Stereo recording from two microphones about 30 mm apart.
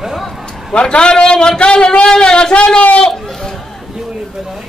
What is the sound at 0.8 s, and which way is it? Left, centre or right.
Speech, left.